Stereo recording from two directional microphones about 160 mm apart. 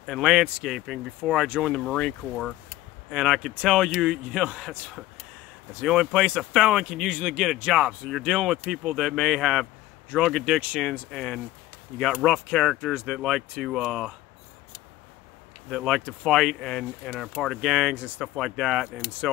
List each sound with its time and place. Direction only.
0.0 s speech: centre (ahead or behind)
15.7 s speech: centre (ahead or behind)